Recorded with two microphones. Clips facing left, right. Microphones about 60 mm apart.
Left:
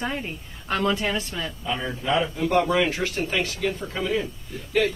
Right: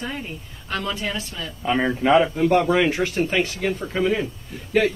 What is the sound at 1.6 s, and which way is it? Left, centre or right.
Speech, right.